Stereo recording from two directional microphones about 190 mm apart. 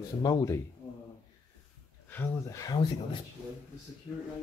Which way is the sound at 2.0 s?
10° left (ahead or behind).